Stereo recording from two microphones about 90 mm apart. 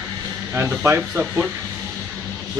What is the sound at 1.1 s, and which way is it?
Speech, 10° right (ahead or behind).